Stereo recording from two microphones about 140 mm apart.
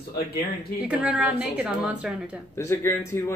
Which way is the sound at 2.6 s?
20° left (ahead or behind).